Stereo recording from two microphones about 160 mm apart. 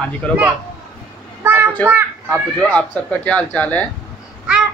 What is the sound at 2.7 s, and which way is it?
Speech, 5° left (ahead or behind).